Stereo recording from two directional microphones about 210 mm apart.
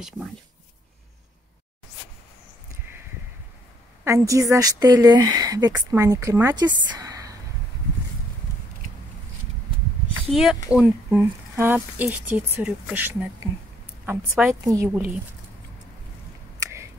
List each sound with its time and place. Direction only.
4.0 s speech: 15° right (ahead or behind)
10.3 s speech: centre (ahead or behind)